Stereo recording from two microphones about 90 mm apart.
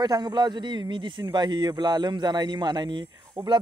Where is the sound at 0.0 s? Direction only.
50° right (ahead or behind).